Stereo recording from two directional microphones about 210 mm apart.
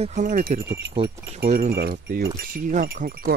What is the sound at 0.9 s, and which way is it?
Speech, 25° right (ahead or behind).